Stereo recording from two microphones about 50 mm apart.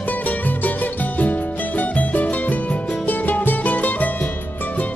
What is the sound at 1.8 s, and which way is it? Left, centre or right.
Music, left.